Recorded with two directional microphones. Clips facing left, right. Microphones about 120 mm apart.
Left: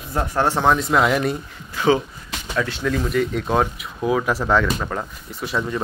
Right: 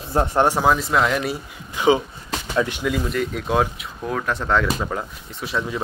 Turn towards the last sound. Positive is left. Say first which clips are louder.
# left 1 dB
turn(degrees=0)  # may be behind; listen again after turning